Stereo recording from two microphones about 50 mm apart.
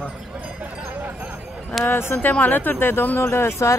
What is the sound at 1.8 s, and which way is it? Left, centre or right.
Speech, left.